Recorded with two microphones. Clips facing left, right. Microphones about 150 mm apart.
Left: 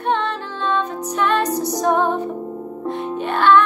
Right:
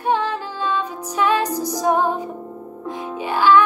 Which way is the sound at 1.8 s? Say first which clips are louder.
Even; 10° right (ahead or behind).